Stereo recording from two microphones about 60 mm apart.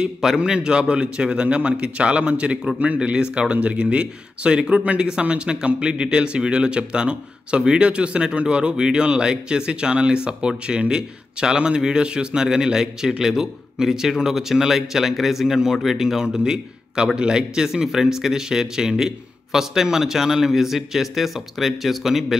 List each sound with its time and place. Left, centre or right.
0.0 s speech: centre